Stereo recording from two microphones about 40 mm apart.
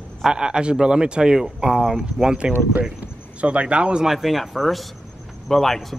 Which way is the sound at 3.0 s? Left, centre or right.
Right.